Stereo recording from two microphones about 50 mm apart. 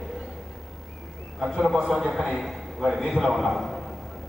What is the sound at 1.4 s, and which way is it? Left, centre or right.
A man's voice, centre.